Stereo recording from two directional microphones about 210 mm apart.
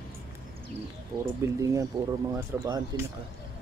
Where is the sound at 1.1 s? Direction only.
20° right (ahead or behind).